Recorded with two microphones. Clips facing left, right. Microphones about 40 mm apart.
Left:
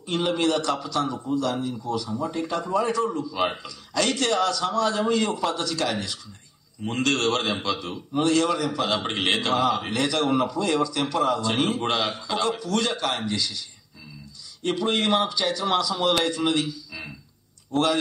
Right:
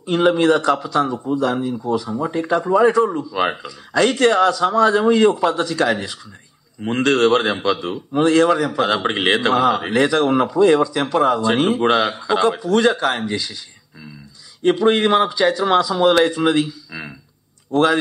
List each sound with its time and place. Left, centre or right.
0.0 s a man's voice: right
14.6 s speech: right